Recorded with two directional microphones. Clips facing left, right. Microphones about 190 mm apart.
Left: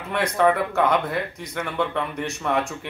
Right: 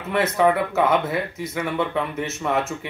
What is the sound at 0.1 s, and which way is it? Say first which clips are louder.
Speech: right 1 dB; 5° right (ahead or behind).